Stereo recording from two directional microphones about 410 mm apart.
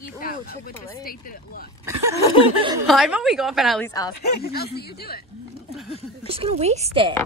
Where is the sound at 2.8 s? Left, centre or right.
Centre.